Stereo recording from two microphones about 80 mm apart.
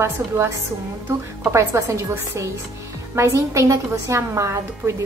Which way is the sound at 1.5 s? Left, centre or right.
Right.